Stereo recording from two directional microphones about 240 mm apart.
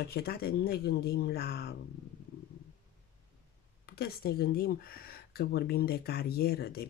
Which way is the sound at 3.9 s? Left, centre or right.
Left.